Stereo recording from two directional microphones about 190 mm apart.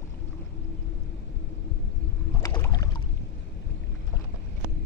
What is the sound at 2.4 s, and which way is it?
Rowboat, 15° left (ahead or behind).